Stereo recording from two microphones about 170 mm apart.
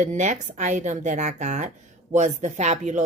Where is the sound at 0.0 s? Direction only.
45° right (ahead or behind).